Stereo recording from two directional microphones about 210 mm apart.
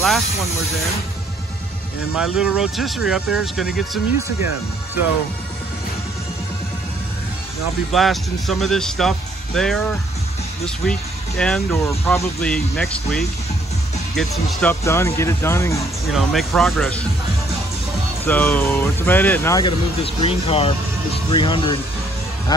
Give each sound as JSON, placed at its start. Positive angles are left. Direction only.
{"t": 2.1, "sound": "speech", "side_deg": -5}
{"t": 7.9, "sound": "speech", "side_deg": 0}
{"t": 16.1, "sound": "speech", "side_deg": 0}
{"t": 18.2, "sound": "speech", "side_deg": 10}
{"t": 20.0, "sound": "speech", "side_deg": 25}